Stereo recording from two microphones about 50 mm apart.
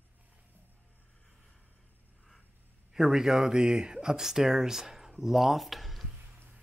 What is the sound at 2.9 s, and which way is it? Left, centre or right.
Speech, centre.